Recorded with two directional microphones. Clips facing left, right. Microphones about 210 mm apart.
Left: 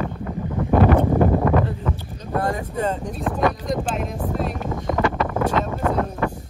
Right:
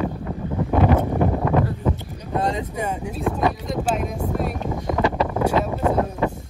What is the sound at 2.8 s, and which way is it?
Speech, 10° right (ahead or behind).